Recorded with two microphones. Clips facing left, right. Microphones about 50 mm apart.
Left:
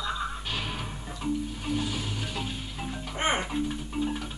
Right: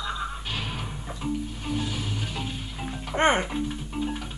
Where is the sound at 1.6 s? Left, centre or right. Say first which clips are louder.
Even; centre.